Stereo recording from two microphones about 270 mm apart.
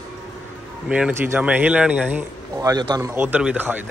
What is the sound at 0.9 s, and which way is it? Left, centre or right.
Speech, centre.